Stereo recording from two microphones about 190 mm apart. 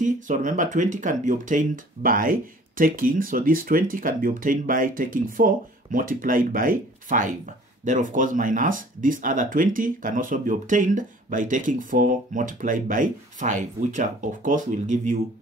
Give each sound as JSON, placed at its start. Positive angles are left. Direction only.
{"t": 0.0, "sound": "speech", "side_deg": -40}